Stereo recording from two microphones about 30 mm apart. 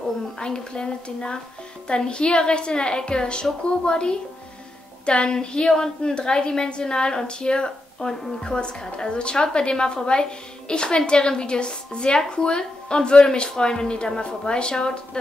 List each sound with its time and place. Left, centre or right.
0.4 s a woman's voice: left
8.1 s a woman's voice: centre
8.5 s a woman's voice: left